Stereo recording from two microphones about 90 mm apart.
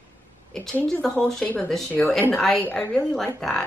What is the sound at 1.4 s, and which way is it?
A woman's voice, 15° left (ahead or behind).